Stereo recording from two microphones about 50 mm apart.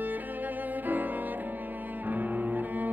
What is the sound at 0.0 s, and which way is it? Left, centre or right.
Music, right.